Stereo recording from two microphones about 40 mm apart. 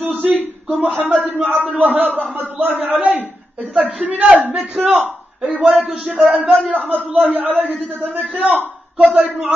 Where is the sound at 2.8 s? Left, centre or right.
Right.